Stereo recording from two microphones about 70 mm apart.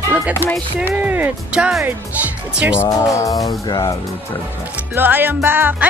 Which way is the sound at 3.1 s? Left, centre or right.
Left.